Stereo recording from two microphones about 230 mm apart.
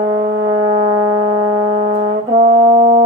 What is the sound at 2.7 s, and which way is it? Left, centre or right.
Music, centre.